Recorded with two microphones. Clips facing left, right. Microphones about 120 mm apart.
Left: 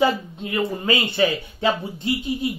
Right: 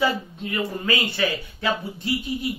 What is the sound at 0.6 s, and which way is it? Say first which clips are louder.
Speech: left 3 dB; 25° left (ahead or behind).